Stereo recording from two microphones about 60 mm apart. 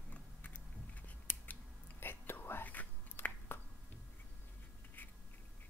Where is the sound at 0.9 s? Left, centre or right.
Left.